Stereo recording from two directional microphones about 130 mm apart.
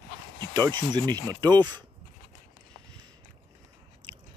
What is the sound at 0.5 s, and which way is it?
Speech, 35° right (ahead or behind).